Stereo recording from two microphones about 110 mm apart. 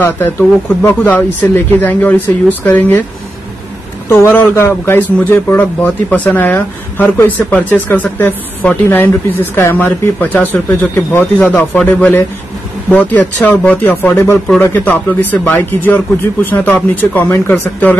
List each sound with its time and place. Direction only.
0.0 s speech: 20° left (ahead or behind)
4.1 s speech: 20° left (ahead or behind)